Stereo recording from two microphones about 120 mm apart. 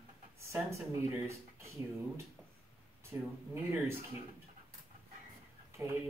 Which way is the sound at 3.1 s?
15° right (ahead or behind).